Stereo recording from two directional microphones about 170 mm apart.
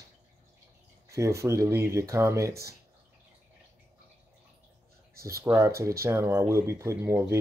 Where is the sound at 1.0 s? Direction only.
15° right (ahead or behind).